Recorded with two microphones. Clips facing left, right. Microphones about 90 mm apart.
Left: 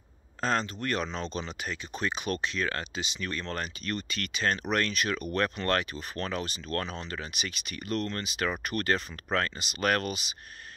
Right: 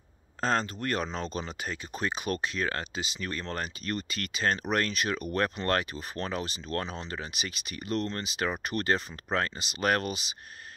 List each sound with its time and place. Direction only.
0.4 s speech: 30° right (ahead or behind)